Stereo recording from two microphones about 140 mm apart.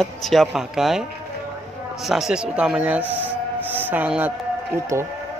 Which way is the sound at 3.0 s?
15° left (ahead or behind).